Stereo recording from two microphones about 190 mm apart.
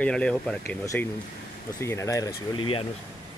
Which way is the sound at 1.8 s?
15° left (ahead or behind).